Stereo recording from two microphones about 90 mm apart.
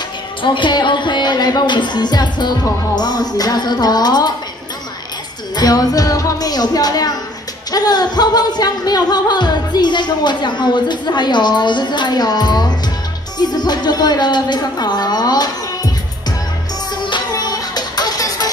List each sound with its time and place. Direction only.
0.4 s music: 60° left (ahead or behind)
5.6 s music: 45° left (ahead or behind)
13.4 s a woman's voice: 50° left (ahead or behind)
17.0 s music: 55° left (ahead or behind)